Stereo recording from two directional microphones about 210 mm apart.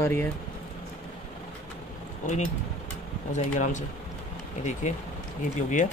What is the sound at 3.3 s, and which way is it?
Speech, 35° left (ahead or behind).